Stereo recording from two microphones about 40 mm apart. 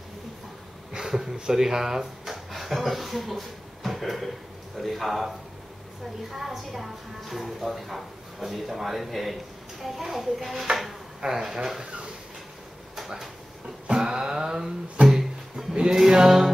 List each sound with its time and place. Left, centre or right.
0.9 s a woman's voice: centre
6.3 s a woman's voice: centre
11.8 s dog: right
13.8 s a sound: centre
15.0 s music: centre
15.9 s speech: centre